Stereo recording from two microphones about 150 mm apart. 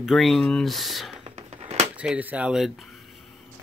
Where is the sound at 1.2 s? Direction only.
45° right (ahead or behind).